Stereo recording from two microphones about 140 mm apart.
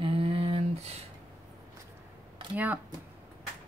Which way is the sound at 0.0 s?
40° right (ahead or behind).